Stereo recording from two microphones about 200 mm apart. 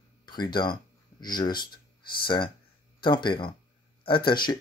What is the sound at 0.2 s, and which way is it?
Speech, 20° left (ahead or behind).